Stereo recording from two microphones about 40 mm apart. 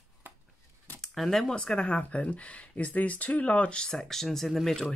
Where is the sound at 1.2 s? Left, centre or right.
Centre.